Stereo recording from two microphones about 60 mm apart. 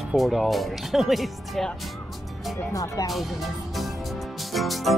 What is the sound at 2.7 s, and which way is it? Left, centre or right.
Speech, left.